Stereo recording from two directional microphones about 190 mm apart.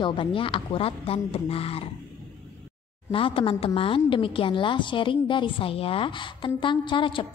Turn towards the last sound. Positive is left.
turn(degrees=25)  # may be behind; listen again after turning